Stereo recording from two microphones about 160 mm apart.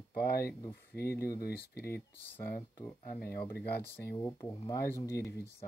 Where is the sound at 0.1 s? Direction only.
75° left (ahead or behind).